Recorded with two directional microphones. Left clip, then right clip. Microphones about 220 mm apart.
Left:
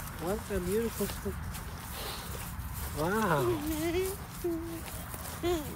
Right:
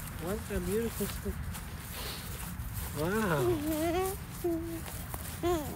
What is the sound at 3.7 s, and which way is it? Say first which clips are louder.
Music: right 1 dB; 15° right (ahead or behind).